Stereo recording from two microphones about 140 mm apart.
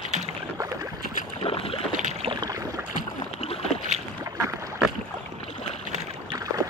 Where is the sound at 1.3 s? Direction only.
45° left (ahead or behind).